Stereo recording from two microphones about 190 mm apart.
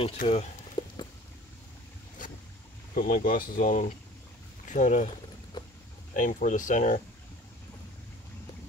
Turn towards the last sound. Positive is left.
turn(degrees=40)  # may be behind; listen again after turning